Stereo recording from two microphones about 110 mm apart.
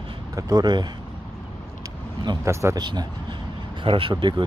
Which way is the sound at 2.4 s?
25° right (ahead or behind).